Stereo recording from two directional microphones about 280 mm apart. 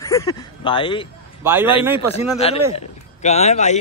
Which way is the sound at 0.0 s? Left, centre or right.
Centre.